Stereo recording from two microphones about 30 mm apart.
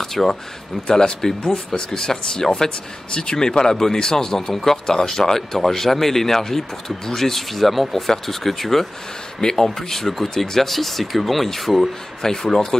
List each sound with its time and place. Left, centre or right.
0.0 s a sound: centre
0.8 s speech: left; by 8.8 s centre
9.4 s speech: left